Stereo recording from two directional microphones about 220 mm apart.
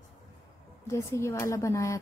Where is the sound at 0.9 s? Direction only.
10° left (ahead or behind).